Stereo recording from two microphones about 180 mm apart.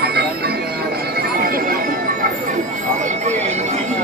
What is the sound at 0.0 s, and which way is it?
Music, 60° right (ahead or behind).